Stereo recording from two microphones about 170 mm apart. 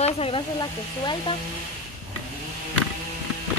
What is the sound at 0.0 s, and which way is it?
Speech, 35° left (ahead or behind).